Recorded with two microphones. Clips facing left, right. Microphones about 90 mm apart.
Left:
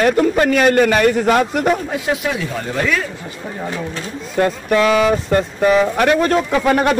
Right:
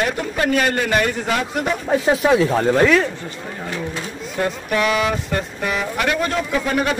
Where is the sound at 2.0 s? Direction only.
30° right (ahead or behind).